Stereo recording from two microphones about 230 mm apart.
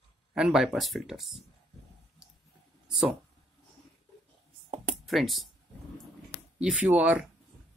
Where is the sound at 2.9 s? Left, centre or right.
Centre.